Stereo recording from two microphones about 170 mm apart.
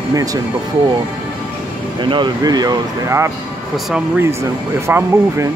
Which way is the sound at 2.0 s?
25° right (ahead or behind).